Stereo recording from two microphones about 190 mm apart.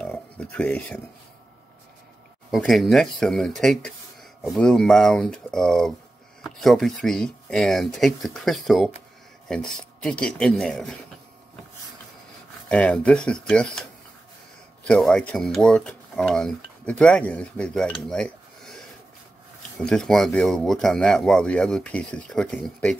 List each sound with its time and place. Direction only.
0.0 s a sound: 5° left (ahead or behind)
2.5 s speech: centre (ahead or behind)
12.6 s speech: 5° left (ahead or behind)
14.9 s speech: centre (ahead or behind)